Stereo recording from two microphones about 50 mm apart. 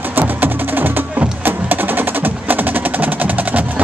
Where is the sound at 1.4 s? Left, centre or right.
Right.